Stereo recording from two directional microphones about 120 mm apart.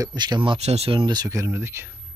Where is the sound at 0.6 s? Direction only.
60° right (ahead or behind); by 1.8 s 20° right (ahead or behind).